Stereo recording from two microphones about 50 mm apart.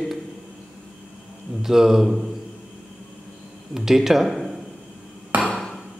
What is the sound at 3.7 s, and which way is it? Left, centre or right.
Speech, centre.